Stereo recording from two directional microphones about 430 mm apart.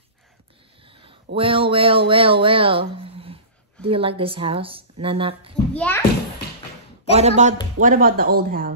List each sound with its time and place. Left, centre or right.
0.8 s speech: centre
5.8 s a child's voice: centre
7.2 s speech: centre